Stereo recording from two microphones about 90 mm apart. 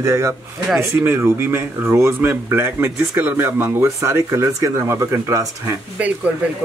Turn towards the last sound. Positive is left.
turn(degrees=-15)  # may be behind; listen again after turning